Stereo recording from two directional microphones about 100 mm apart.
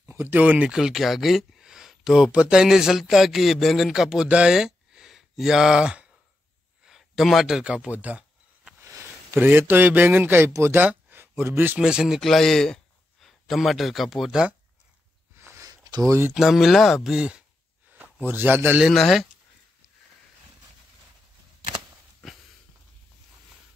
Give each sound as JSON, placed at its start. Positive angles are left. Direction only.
{"t": 0.0, "sound": "speech", "side_deg": -25}
{"t": 8.7, "sound": "a man's voice", "side_deg": -30}
{"t": 10.9, "sound": "a sound", "side_deg": -20}
{"t": 11.8, "sound": "a man's voice", "side_deg": -5}
{"t": 15.4, "sound": "a sound", "side_deg": -30}
{"t": 16.1, "sound": "a man's voice", "side_deg": -25}
{"t": 16.3, "sound": "speech", "side_deg": 0}
{"t": 18.2, "sound": "a man's voice", "side_deg": -20}
{"t": 18.8, "sound": "speech", "side_deg": 0}